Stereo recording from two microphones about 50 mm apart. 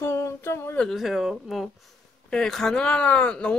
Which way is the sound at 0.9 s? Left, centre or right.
Centre.